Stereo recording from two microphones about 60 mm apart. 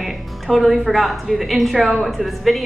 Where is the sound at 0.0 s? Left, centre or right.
Centre.